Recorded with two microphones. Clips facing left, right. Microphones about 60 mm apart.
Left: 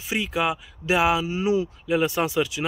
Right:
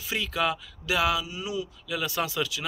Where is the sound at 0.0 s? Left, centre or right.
Left.